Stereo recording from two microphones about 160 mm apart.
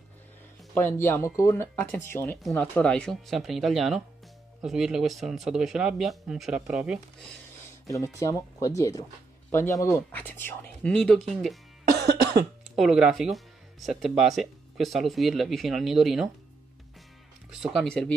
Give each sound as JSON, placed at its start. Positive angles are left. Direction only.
{"t": 0.7, "sound": "speech", "side_deg": 15}
{"t": 2.4, "sound": "speech", "side_deg": 0}
{"t": 7.8, "sound": "speech", "side_deg": 20}
{"t": 12.0, "sound": "cough", "side_deg": -85}
{"t": 12.7, "sound": "speech", "side_deg": 0}
{"t": 17.5, "sound": "speech", "side_deg": 0}